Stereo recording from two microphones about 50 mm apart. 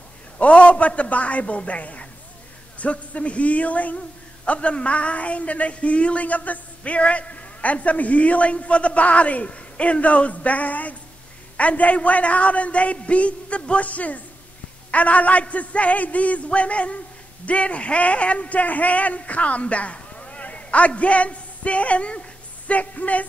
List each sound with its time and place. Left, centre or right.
0.4 s speech: left